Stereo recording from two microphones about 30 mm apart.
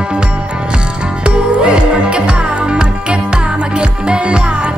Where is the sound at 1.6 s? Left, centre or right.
Right.